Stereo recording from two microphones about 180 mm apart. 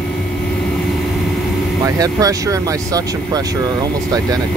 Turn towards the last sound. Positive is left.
turn(degrees=-20)  # may be behind; listen again after turning